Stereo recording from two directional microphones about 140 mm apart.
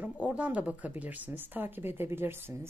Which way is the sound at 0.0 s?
10° right (ahead or behind).